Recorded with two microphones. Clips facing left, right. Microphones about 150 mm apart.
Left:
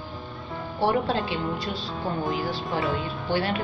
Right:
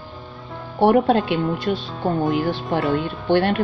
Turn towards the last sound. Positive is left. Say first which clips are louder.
# right 8 dB
turn(degrees=-55)  # may be behind; listen again after turning